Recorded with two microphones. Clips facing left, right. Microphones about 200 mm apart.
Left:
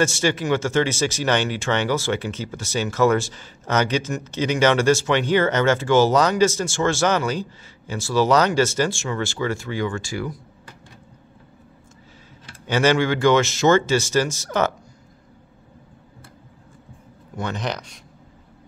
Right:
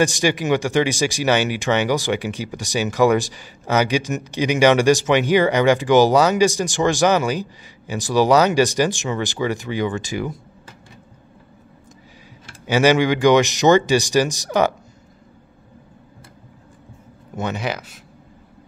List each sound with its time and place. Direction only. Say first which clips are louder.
0.0 s speech: right 2 dB; 15° right (ahead or behind)
12.6 s speech: right 3 dB; 10° right (ahead or behind)
17.6 s speech: right 2 dB; 5° right (ahead or behind)